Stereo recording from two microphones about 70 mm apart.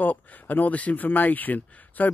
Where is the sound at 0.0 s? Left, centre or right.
Left.